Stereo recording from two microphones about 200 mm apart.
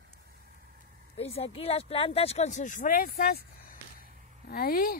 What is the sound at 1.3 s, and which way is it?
Speech, 30° left (ahead or behind).